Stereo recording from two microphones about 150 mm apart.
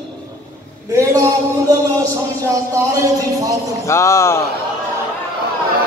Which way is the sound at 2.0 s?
20° right (ahead or behind).